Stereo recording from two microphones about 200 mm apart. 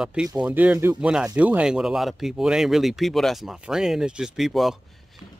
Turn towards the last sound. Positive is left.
turn(degrees=0)  # may be behind; listen again after turning